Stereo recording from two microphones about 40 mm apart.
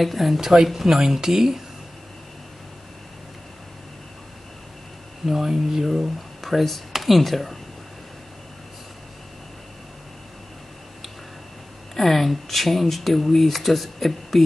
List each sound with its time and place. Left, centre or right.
0.0 s speech: centre
0.4 s speech: centre
5.2 s speech: centre
6.4 s speech: centre
11.9 s speech: centre